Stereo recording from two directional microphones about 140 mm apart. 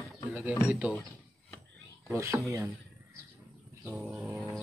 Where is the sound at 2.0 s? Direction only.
20° right (ahead or behind).